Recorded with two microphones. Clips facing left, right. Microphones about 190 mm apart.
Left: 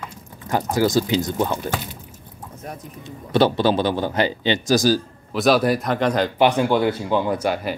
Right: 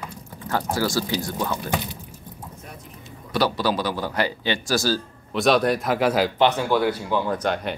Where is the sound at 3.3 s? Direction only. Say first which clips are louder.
Left 5 dB; 25° left (ahead or behind).